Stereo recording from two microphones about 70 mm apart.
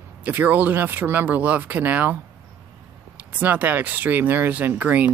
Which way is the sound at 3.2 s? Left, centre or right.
Right.